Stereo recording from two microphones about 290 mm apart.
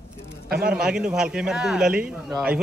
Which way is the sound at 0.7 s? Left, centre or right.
Centre.